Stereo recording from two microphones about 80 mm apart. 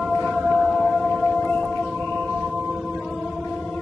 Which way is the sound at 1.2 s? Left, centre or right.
Centre.